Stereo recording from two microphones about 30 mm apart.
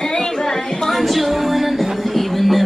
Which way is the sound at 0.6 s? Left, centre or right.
Left.